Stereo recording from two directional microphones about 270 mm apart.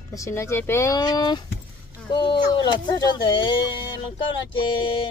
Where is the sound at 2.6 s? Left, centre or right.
Centre.